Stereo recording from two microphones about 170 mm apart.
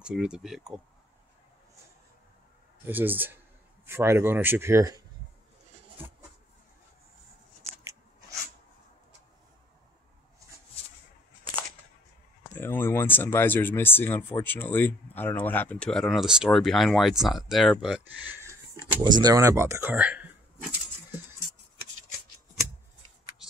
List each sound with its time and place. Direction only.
0.0 s speech: 5° right (ahead or behind)
2.9 s a man's voice: 10° right (ahead or behind)
12.5 s speech: 10° left (ahead or behind); by 18.9 s 15° right (ahead or behind)
18.9 s a sound: 25° right (ahead or behind); by 21.2 s 10° right (ahead or behind)